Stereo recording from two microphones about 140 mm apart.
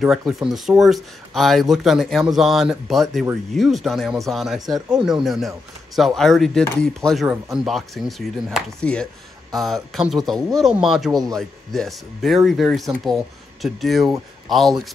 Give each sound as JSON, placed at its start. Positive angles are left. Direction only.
{"t": 0.3, "sound": "speech", "side_deg": 0}
{"t": 4.7, "sound": "speech", "side_deg": -30}
{"t": 5.0, "sound": "speech", "side_deg": 0}